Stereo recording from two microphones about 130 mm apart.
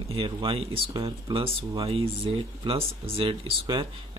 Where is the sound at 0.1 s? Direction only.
45° right (ahead or behind).